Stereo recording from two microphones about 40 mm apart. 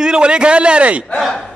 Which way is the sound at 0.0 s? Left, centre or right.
Right.